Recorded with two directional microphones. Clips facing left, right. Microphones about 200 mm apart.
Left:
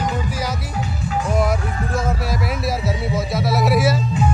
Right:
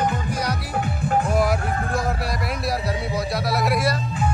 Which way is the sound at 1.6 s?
55° right (ahead or behind).